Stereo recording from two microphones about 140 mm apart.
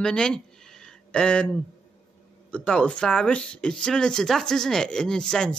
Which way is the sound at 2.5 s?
5° left (ahead or behind).